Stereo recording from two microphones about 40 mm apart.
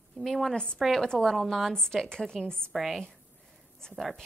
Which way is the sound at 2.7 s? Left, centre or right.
Centre.